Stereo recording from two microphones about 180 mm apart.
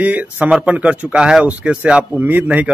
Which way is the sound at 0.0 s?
10° right (ahead or behind).